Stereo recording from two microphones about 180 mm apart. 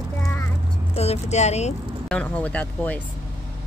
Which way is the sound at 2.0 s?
5° left (ahead or behind).